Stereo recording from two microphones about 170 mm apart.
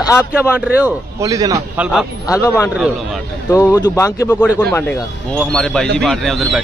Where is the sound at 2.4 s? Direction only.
15° left (ahead or behind).